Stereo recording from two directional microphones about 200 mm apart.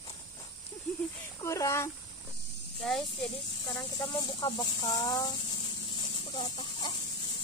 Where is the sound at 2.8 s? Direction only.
Centre (ahead or behind).